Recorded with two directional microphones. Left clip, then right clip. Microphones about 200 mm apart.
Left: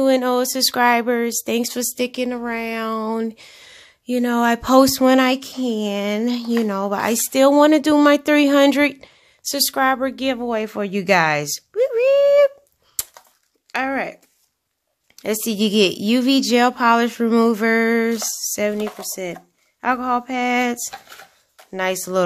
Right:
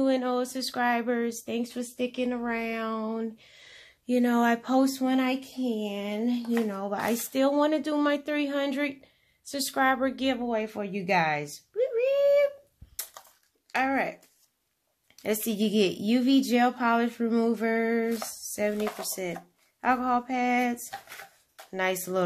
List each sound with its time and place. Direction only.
0.0 s speech: 30° left (ahead or behind)
4.6 s speech: 40° left (ahead or behind)
13.7 s speech: 30° left (ahead or behind)
15.1 s speech: 25° left (ahead or behind)